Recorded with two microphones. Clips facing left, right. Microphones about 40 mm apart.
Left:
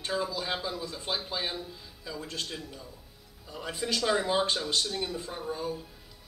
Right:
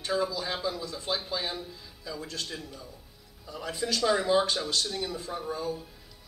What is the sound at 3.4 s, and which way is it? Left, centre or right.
Speech, left.